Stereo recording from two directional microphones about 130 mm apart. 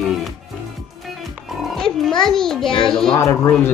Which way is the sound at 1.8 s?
5° left (ahead or behind).